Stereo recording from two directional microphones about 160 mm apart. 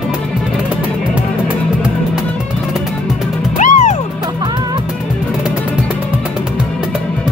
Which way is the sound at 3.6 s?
50° left (ahead or behind).